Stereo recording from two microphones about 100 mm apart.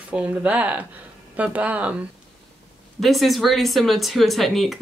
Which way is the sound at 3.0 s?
Centre (ahead or behind).